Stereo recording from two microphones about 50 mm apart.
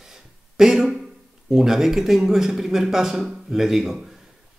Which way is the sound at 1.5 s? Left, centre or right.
Centre.